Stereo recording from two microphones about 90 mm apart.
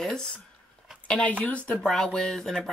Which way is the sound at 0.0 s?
5° left (ahead or behind).